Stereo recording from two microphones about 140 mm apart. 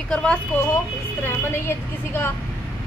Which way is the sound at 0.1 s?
5° left (ahead or behind).